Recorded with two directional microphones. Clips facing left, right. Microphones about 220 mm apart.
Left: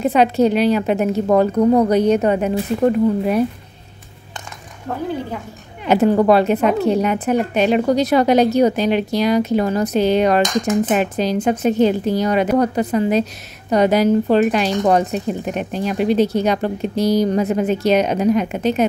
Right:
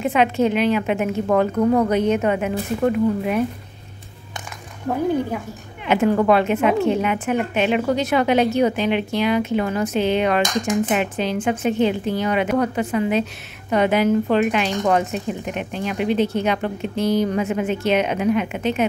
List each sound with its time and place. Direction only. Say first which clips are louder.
0.0 s a woman's voice: left 4 dB; 35° left (ahead or behind)
5.9 s a woman's voice: left 3 dB; 35° left (ahead or behind)